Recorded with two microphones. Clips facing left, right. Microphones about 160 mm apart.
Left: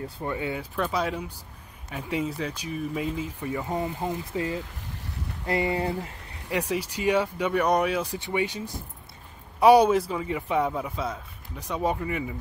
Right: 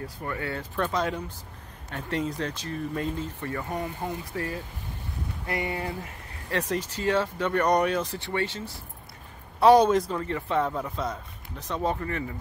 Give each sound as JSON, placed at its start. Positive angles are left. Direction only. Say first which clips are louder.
{"t": 0.0, "sound": "speech", "louder": "left 3 dB", "side_deg": 20}
{"t": 0.7, "sound": "speech", "louder": "right 1 dB", "side_deg": 5}
{"t": 6.5, "sound": "speech", "louder": "left 1 dB", "side_deg": 10}